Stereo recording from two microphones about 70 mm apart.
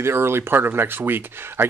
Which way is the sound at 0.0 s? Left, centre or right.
Right.